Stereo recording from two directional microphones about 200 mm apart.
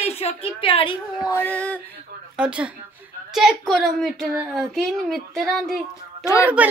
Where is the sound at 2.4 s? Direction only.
5° right (ahead or behind).